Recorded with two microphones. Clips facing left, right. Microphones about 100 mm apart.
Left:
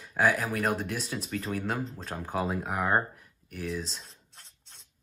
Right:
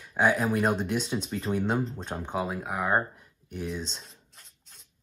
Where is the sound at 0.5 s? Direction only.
30° right (ahead or behind).